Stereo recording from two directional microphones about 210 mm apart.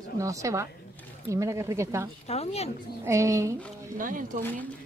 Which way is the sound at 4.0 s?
40° right (ahead or behind).